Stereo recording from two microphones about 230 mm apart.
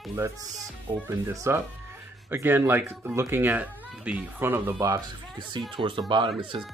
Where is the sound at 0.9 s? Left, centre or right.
Centre.